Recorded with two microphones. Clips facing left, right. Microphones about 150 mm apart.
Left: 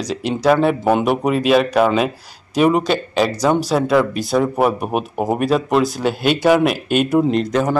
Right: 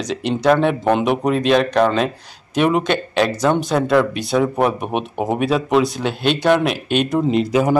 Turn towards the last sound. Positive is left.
turn(degrees=-10)  # may be behind; listen again after turning